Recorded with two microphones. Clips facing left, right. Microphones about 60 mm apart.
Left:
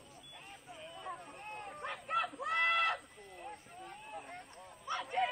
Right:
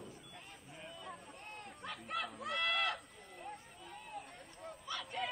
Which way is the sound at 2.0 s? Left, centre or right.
Centre.